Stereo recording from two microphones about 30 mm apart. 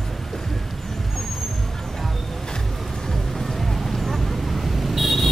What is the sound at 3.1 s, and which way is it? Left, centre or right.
Vehicle, centre.